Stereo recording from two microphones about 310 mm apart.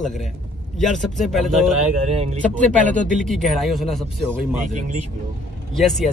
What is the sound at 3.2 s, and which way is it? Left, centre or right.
Speech, centre.